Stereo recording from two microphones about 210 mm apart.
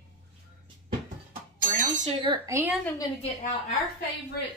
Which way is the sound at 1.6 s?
40° right (ahead or behind).